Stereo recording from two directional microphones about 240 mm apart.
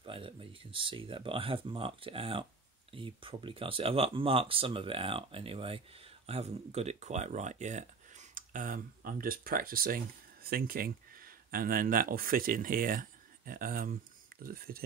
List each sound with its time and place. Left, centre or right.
0.0 s speech: right